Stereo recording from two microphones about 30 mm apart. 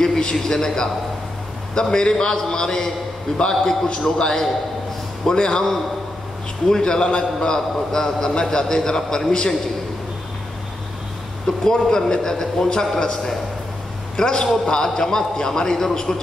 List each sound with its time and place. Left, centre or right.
0.0 s a man's voice: left
11.4 s a man's voice: left